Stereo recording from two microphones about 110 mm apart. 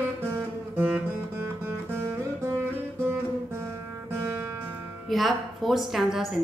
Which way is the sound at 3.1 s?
20° right (ahead or behind).